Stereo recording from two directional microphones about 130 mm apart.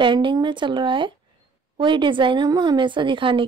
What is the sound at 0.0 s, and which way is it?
A woman's voice, 40° right (ahead or behind).